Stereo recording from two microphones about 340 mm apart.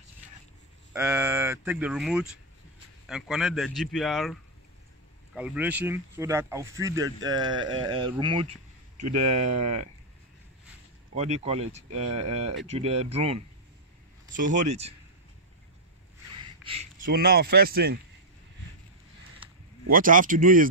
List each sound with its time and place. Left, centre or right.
0.9 s speech: centre
11.1 s speech: centre
16.6 s speech: centre
19.4 s speech: right